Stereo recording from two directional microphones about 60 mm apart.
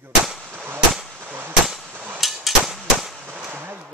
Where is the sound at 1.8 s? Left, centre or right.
Right.